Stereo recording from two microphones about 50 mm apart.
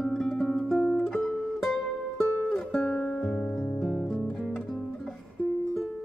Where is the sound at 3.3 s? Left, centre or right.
Centre.